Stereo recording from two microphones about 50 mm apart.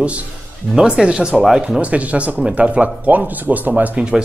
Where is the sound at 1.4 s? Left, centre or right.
Centre.